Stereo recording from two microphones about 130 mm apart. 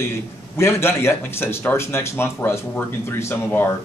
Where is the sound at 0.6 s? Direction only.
20° left (ahead or behind).